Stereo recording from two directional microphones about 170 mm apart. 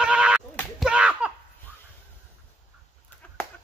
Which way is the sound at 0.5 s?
Centre (ahead or behind).